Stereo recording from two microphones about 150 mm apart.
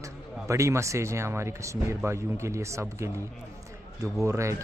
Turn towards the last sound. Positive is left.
turn(degrees=-20)  # may be behind; listen again after turning